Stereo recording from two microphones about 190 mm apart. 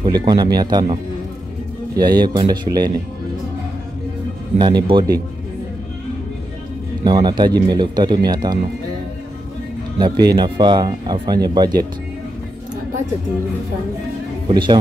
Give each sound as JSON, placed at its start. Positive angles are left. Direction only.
{"t": 0.0, "sound": "speech", "side_deg": -25}
{"t": 2.0, "sound": "speech", "side_deg": -20}
{"t": 4.6, "sound": "speech", "side_deg": -25}
{"t": 7.1, "sound": "speech", "side_deg": -25}
{"t": 9.9, "sound": "speech", "side_deg": -25}
{"t": 14.5, "sound": "speech", "side_deg": -25}